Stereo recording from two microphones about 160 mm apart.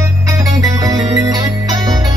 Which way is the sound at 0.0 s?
20° right (ahead or behind).